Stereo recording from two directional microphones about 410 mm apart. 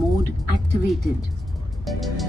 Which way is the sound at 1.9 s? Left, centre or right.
Centre.